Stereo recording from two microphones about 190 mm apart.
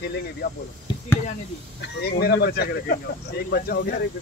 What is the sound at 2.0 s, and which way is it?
Speech, 55° left (ahead or behind).